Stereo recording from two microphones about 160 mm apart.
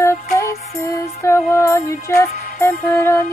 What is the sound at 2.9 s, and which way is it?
Music, 15° left (ahead or behind).